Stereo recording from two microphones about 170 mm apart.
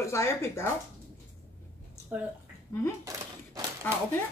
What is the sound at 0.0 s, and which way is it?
Speech, 15° left (ahead or behind).